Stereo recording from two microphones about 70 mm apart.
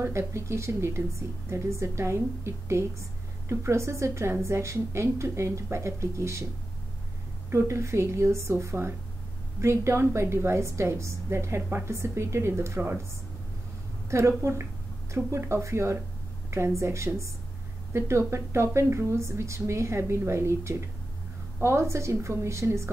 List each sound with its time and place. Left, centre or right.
0.3 s a woman's voice: right
7.5 s a woman's voice: right
14.1 s a woman's voice: right